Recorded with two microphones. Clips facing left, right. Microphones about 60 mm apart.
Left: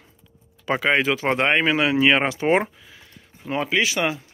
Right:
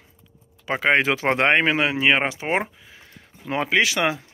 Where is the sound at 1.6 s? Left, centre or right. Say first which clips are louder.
Left 1 dB; right.